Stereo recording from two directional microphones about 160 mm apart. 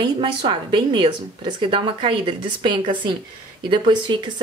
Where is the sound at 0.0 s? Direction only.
30° right (ahead or behind).